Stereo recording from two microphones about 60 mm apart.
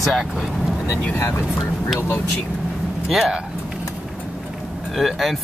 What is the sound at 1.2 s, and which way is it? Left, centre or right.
Speech, left.